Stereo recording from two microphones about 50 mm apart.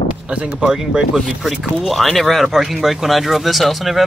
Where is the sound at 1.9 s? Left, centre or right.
Centre.